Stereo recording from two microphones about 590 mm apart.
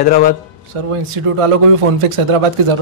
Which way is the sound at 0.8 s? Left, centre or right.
Right.